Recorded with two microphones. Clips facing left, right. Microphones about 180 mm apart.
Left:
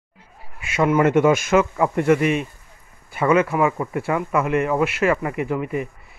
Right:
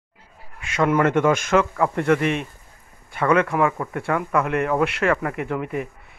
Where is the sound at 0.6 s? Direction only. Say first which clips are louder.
Left 1 dB; 5° left (ahead or behind).